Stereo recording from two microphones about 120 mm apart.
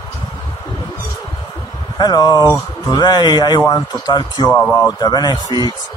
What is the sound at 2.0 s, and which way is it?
Speech, 35° left (ahead or behind).